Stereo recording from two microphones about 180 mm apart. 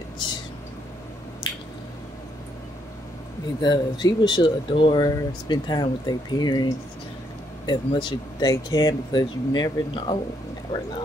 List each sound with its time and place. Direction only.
1.5 s squish: 25° left (ahead or behind)
3.6 s speech: 25° left (ahead or behind)